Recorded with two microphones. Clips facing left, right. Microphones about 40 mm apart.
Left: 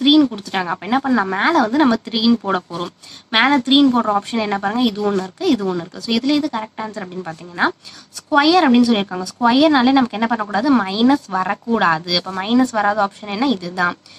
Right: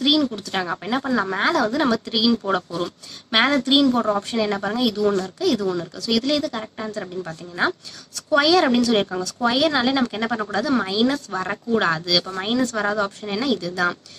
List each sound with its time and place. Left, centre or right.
0.0 s a woman's voice: left
1.5 s a woman's voice: left
2.0 s a woman's voice: centre